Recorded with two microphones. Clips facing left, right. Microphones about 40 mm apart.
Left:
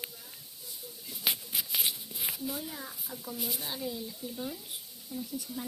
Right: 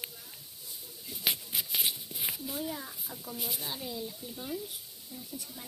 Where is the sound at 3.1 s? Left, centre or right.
Right.